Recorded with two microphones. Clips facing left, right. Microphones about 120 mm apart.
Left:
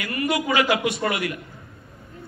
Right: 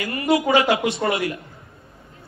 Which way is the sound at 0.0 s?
25° right (ahead or behind).